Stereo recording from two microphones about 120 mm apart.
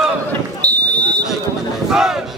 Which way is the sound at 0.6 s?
10° left (ahead or behind).